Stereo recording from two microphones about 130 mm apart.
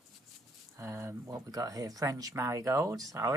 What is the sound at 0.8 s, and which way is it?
Speech, 20° right (ahead or behind).